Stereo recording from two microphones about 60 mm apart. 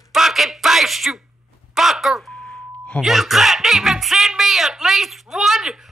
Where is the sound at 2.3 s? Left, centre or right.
Centre.